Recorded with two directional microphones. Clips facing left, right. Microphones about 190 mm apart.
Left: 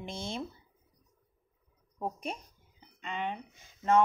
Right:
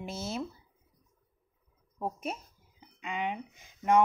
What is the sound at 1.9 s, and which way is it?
A woman's voice, 5° right (ahead or behind).